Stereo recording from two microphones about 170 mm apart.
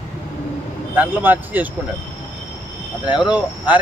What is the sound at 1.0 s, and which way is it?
Speech, 10° right (ahead or behind).